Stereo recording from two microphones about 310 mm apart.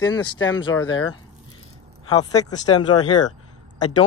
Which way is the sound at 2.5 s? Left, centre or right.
Centre.